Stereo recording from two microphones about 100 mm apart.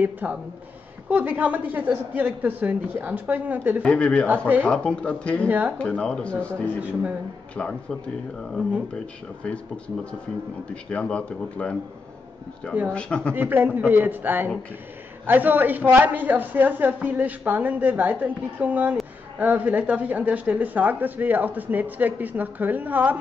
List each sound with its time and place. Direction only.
0.0 s a woman's voice: 15° right (ahead or behind)
3.8 s speech: 10° left (ahead or behind)
6.8 s a woman's voice: 15° right (ahead or behind)
7.5 s speech: 10° left (ahead or behind)
10.7 s speech: 10° left (ahead or behind)
12.8 s speech: 10° left (ahead or behind)
13.3 s a man's voice: 20° right (ahead or behind)